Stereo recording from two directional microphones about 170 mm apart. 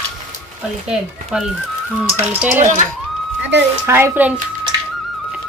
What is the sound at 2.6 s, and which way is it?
Speech, 45° right (ahead or behind).